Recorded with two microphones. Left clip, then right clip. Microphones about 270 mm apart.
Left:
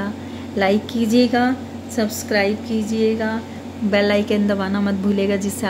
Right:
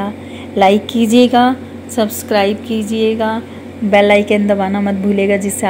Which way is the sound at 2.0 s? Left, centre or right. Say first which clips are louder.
Right 6 dB; centre.